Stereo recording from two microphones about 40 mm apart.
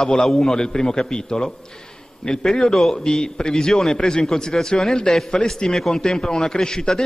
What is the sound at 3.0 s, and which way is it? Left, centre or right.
A man's voice, centre.